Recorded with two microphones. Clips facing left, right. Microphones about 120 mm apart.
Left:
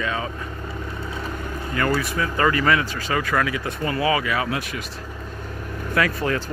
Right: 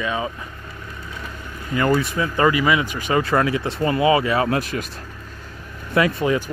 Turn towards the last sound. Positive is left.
turn(degrees=-20)  # may be behind; listen again after turning